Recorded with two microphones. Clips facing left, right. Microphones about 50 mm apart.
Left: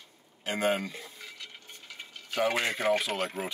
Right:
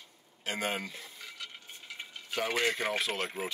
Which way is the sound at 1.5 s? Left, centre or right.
Centre.